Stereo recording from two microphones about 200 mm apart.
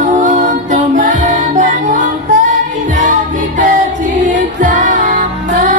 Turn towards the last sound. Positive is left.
turn(degrees=-40)  # may be behind; listen again after turning